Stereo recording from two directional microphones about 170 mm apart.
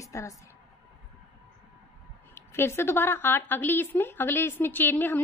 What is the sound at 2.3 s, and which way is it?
A woman's voice, 15° left (ahead or behind).